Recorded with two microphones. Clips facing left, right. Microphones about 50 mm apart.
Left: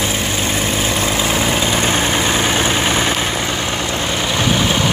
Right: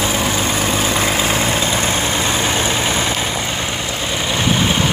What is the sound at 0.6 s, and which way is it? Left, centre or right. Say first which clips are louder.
Vehicle: right 1 dB; centre.